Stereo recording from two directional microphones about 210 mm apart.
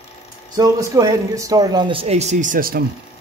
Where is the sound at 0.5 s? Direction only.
15° right (ahead or behind); by 2.8 s 40° right (ahead or behind).